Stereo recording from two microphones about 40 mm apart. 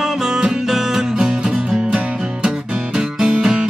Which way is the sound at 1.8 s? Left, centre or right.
Right.